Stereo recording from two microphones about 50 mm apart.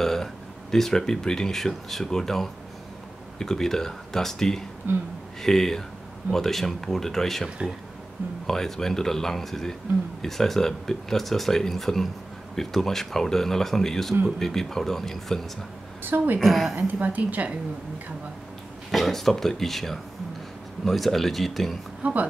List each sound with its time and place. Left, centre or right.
0.0 s speech: centre
4.9 s speech: right
5.4 s speech: centre
7.4 s speech: centre
8.5 s speech: centre
16.0 s a woman's voice: right
16.3 s speech: centre
16.7 s a woman's voice: right
18.9 s speech: centre
22.0 s a woman's voice: right